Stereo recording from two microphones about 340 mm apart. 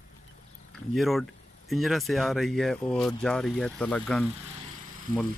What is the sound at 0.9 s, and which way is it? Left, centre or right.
Speech, centre.